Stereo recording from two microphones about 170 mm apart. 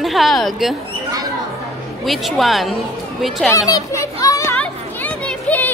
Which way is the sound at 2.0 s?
Centre (ahead or behind).